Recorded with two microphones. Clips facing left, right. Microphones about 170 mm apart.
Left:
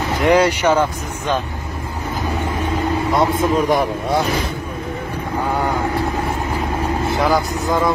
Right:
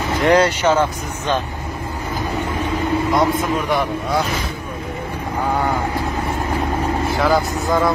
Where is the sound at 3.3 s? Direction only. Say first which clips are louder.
Left 3 dB; 40° left (ahead or behind).